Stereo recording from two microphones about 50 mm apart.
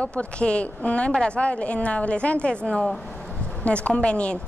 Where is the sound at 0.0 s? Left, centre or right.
Left.